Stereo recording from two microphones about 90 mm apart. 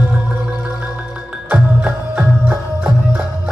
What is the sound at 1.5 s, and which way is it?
Music, 15° right (ahead or behind).